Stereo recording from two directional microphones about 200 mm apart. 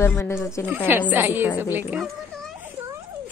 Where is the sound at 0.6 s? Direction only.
10° right (ahead or behind).